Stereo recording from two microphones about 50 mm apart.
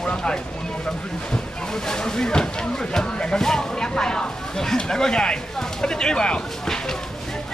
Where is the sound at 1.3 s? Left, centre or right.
Centre.